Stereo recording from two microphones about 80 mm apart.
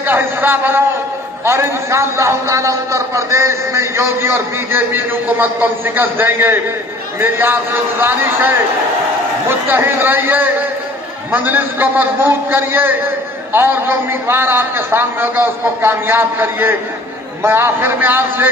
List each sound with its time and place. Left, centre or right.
0.0 s a man's voice: right
9.5 s a man's voice: right